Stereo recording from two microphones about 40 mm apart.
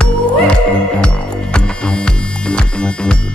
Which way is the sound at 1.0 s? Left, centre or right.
Left.